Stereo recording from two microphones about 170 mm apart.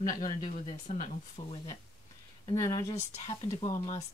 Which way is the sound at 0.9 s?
45° left (ahead or behind).